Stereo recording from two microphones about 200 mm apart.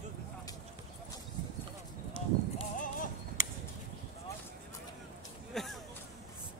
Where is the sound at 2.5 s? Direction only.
40° left (ahead or behind).